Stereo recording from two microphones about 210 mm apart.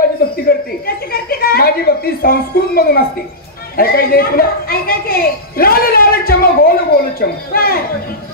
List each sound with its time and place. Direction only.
0.5 s a woman's voice: 45° left (ahead or behind)